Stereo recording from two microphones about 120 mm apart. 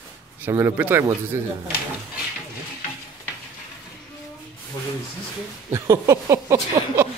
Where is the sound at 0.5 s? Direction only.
20° right (ahead or behind).